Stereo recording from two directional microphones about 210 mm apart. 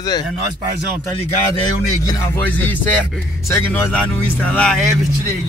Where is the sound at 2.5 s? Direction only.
10° left (ahead or behind).